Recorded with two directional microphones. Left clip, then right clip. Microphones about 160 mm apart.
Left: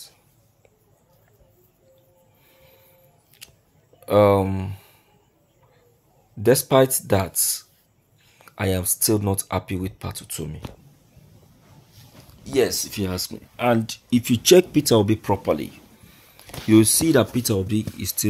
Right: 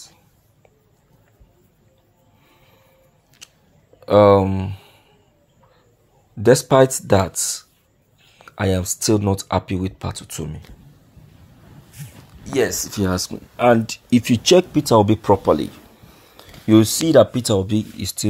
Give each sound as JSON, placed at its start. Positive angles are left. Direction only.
{"t": 4.0, "sound": "speech", "side_deg": -15}
{"t": 6.4, "sound": "speech", "side_deg": -20}
{"t": 12.8, "sound": "speech", "side_deg": -20}
{"t": 15.0, "sound": "speech", "side_deg": -25}
{"t": 17.4, "sound": "speech", "side_deg": -25}
{"t": 17.6, "sound": "speech", "side_deg": -35}